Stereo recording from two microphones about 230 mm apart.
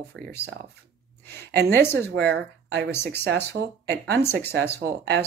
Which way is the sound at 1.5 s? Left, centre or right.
Right.